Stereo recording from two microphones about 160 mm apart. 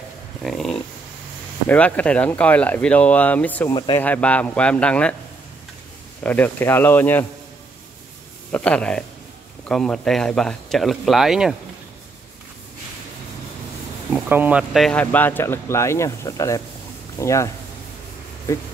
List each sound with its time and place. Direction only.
0.4 s speech: centre (ahead or behind)
3.7 s speech: 30° left (ahead or behind)
4.0 s speech: 10° left (ahead or behind)
6.2 s speech: 10° left (ahead or behind)
8.5 s speech: 10° left (ahead or behind)
14.1 s speech: 10° right (ahead or behind); by 17.5 s 20° left (ahead or behind)